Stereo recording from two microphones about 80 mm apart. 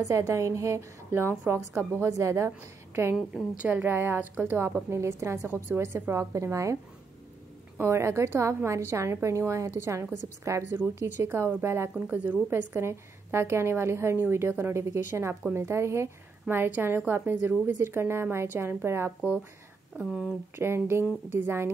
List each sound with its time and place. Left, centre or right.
0.0 s a woman's voice: right
20.0 s speech: centre
20.5 s a woman's voice: right